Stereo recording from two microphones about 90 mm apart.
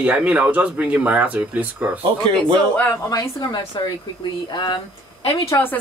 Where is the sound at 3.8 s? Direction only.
60° left (ahead or behind).